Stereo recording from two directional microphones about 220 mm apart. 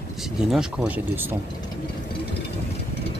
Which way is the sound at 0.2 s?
Centre (ahead or behind).